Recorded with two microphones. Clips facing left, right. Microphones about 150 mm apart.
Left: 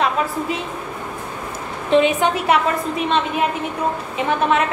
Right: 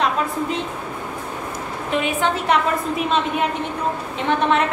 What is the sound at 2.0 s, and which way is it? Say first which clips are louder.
Speech: left 5 dB; 20° left (ahead or behind).